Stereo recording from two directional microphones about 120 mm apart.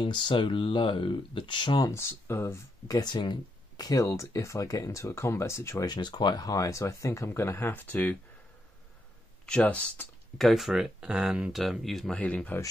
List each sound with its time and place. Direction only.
0.0 s speech: 40° left (ahead or behind); by 3.0 s 25° left (ahead or behind)
3.0 s speech: 35° left (ahead or behind)
5.9 s speech: 40° left (ahead or behind); by 8.2 s 15° left (ahead or behind)
9.5 s speech: 10° left (ahead or behind)
12.2 s speech: 10° left (ahead or behind)